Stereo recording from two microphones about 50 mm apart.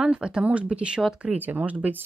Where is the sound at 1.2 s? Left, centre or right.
Right.